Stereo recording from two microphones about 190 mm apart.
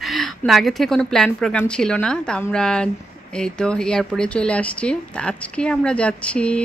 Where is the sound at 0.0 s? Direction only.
Centre (ahead or behind).